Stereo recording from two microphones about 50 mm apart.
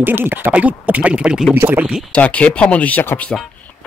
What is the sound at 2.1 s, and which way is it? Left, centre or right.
Speech, left.